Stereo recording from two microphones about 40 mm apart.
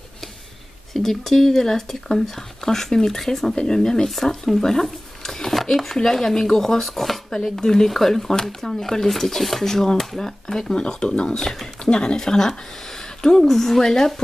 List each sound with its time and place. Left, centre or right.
0.9 s speech: centre
7.6 s speech: centre